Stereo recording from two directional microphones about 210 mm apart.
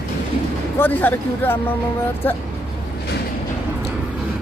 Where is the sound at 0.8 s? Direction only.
10° left (ahead or behind).